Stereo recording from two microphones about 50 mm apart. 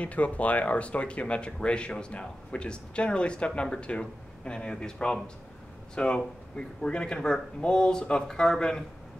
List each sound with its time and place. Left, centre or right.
0.0 s speech: left